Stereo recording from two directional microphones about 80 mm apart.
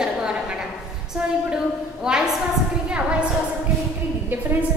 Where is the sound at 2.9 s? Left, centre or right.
Centre.